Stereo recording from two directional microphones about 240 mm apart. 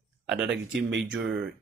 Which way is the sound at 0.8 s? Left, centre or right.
Right.